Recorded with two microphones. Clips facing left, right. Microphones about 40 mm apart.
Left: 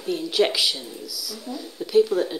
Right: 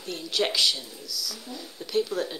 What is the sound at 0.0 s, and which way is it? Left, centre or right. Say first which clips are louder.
A woman's voice: left 6 dB; centre.